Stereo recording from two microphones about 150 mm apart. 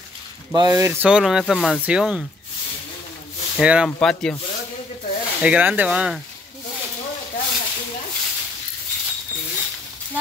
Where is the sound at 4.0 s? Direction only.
5° left (ahead or behind).